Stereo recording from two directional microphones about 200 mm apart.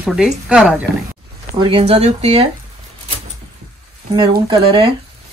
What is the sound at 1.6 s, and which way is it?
Speech, 25° right (ahead or behind).